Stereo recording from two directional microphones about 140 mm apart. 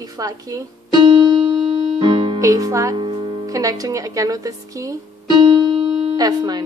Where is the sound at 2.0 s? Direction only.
35° right (ahead or behind).